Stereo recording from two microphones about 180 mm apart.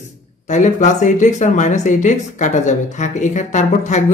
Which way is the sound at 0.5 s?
45° left (ahead or behind).